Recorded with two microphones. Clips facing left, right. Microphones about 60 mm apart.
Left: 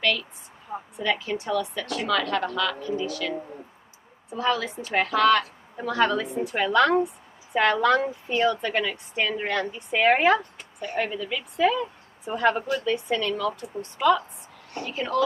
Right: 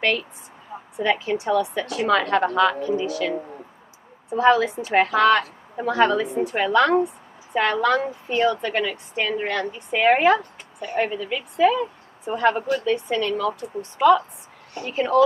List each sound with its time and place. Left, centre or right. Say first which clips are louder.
0.0 s a woman's voice: right 3 dB; right
0.9 s a woman's voice: right 5 dB; right
4.4 s a woman's voice: right 8 dB; right; by 7.7 s centre
8.0 s a woman's voice: right 2 dB; centre